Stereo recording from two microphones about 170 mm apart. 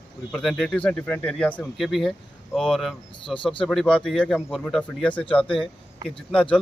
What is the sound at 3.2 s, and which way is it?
Speech, 30° left (ahead or behind).